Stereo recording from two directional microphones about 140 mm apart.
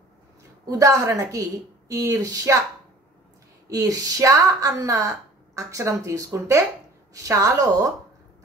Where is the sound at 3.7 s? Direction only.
25° right (ahead or behind).